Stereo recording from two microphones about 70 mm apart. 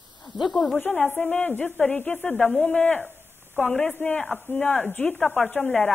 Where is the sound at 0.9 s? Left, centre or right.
Centre.